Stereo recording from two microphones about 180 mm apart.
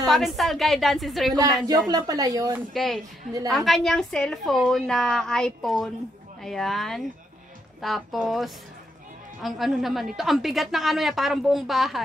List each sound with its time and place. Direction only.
0.0 s a woman's voice: centre (ahead or behind)
1.3 s a woman's voice: 20° right (ahead or behind)
2.7 s a woman's voice: centre (ahead or behind)